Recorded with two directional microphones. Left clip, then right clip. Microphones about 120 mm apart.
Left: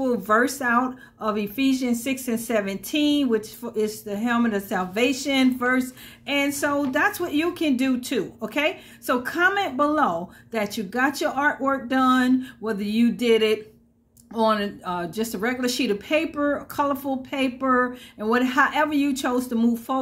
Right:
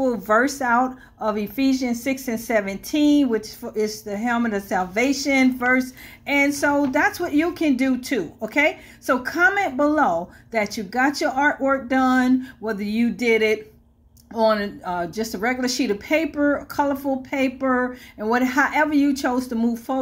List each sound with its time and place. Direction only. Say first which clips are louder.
0.0 s speech: right 2 dB; 10° left (ahead or behind)
14.3 s speech: right 2 dB; 15° left (ahead or behind)